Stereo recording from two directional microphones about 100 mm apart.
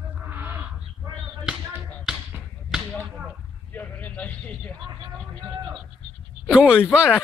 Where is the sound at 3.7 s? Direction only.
15° left (ahead or behind).